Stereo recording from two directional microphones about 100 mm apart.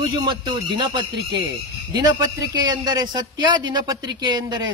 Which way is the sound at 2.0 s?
40° right (ahead or behind).